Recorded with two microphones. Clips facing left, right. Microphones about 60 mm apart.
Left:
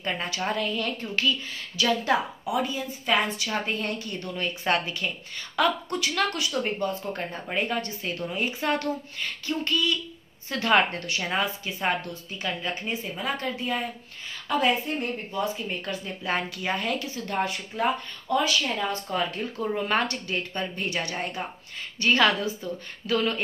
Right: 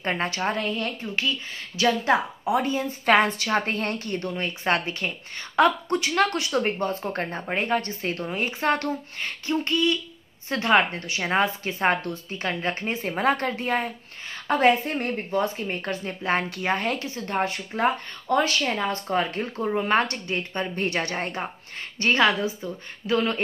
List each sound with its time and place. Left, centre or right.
0.0 s a woman's voice: right
1.0 s speech: centre
1.8 s speech: right
2.6 s a woman's voice: right
3.1 s a woman's voice: right
3.4 s a woman's voice: right
3.7 s a woman's voice: right
4.3 s a woman's voice: right
20.7 s a woman's voice: right
22.1 s speech: right